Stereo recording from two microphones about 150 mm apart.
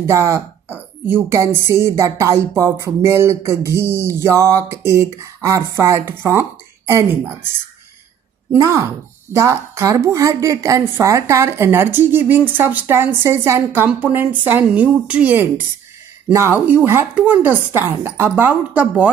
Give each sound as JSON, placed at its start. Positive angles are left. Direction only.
{"t": 0.0, "sound": "a woman's voice", "side_deg": -20}
{"t": 8.5, "sound": "a woman's voice", "side_deg": -20}